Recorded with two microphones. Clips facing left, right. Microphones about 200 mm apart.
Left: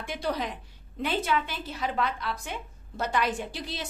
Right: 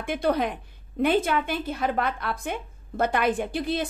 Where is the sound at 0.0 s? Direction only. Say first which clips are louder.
Right 7 dB; 55° right (ahead or behind).